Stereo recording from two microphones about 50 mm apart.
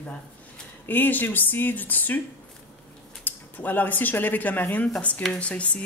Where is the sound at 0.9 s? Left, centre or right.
Left.